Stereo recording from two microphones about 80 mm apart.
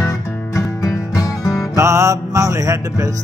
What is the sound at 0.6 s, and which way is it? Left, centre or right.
Music, left.